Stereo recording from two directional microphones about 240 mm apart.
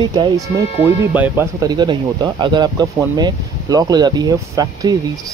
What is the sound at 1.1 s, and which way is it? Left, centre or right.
Speech, centre.